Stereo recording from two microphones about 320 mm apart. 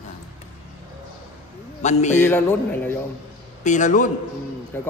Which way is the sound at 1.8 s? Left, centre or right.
Left.